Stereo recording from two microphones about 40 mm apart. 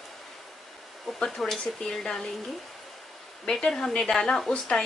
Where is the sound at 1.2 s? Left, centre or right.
Centre.